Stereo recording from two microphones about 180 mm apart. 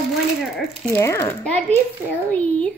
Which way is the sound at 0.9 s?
15° left (ahead or behind).